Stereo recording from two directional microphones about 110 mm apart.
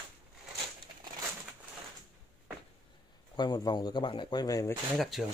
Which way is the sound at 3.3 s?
40° left (ahead or behind).